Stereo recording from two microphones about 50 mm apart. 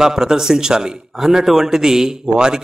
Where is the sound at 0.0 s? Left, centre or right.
Centre.